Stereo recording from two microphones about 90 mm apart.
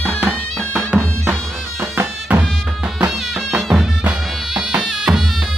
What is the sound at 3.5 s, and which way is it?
Music, centre (ahead or behind).